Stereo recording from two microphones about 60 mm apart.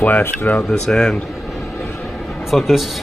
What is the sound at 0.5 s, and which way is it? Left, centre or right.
Speech, centre.